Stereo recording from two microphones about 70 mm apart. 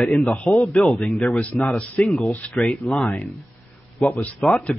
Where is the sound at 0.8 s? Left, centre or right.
Centre.